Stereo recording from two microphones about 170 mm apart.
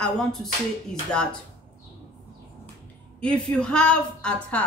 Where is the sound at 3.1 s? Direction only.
5° left (ahead or behind).